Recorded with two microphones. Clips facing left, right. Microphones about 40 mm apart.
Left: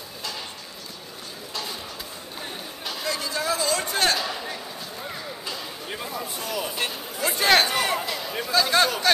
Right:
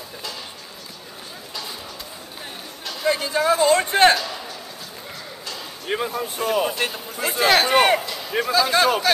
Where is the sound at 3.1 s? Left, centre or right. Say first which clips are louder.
Right 8 dB; right.